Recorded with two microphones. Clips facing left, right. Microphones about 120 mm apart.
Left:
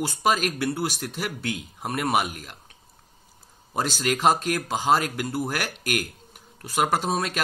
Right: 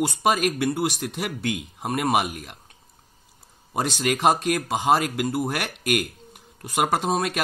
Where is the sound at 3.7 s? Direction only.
15° right (ahead or behind).